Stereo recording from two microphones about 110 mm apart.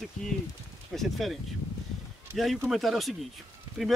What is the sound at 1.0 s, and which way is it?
Speech, centre (ahead or behind).